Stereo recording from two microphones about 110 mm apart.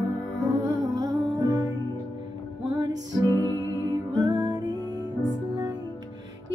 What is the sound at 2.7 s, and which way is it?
Music, 35° right (ahead or behind).